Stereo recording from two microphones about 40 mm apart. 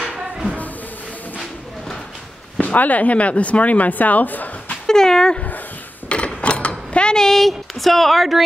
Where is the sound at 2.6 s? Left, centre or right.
Left.